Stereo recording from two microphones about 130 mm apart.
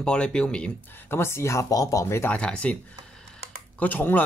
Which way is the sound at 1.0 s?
20° left (ahead or behind).